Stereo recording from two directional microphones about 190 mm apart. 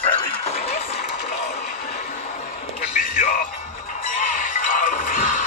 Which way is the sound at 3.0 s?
45° left (ahead or behind).